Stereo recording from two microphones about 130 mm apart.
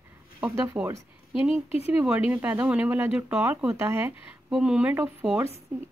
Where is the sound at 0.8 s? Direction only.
20° right (ahead or behind).